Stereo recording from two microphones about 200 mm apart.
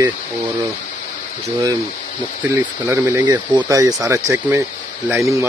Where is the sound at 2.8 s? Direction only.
15° right (ahead or behind).